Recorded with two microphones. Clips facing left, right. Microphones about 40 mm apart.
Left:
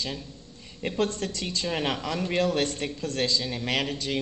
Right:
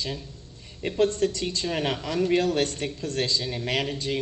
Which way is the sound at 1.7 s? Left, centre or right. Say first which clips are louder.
Left 1 dB; centre.